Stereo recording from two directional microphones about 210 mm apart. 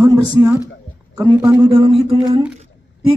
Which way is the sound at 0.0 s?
15° right (ahead or behind).